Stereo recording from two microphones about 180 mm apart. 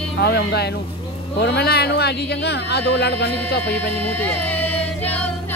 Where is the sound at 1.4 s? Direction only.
65° left (ahead or behind).